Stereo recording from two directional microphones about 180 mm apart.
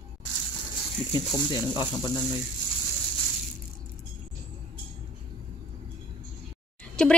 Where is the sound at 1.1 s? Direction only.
25° left (ahead or behind).